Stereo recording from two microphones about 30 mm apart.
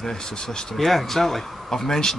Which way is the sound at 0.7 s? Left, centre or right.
Centre.